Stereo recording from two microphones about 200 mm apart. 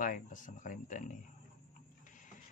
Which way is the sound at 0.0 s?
40° left (ahead or behind).